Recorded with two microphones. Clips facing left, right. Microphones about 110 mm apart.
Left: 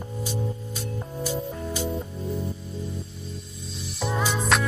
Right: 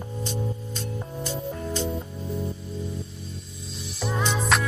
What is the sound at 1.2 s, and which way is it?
Music, 10° left (ahead or behind).